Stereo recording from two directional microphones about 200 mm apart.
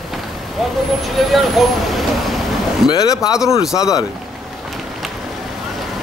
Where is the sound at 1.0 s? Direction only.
Centre (ahead or behind).